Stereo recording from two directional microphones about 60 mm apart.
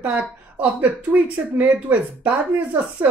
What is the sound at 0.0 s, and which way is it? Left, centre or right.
Speech, right.